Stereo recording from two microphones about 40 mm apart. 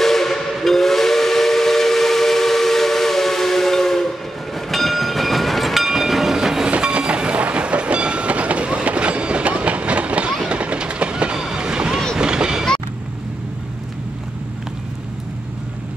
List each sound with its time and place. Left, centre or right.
0.0 s steam whistle: centre
4.6 s train: centre
6.8 s train: right
11.4 s a sound: centre